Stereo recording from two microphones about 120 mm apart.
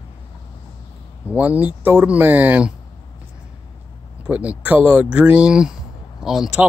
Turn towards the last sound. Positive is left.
turn(degrees=-5)  # may be behind; listen again after turning